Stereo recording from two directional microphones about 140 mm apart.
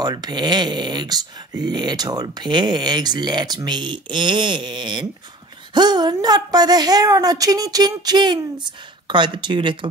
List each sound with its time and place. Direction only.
0.0 s a woman's voice: 30° right (ahead or behind)